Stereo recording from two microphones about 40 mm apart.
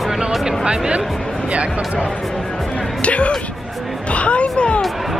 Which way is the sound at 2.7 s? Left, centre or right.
Left.